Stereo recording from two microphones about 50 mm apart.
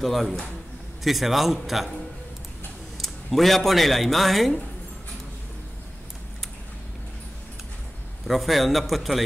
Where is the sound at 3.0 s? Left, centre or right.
Centre.